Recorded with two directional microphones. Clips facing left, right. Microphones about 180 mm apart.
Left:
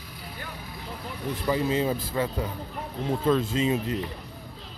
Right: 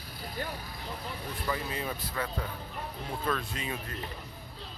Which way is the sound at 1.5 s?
25° left (ahead or behind).